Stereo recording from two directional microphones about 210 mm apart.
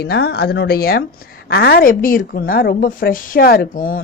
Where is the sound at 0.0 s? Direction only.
50° left (ahead or behind).